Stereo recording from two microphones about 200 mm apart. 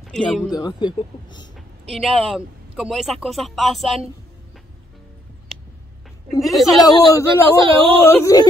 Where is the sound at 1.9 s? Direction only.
Centre (ahead or behind).